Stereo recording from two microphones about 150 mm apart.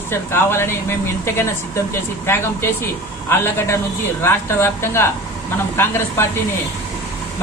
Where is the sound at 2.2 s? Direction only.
15° left (ahead or behind).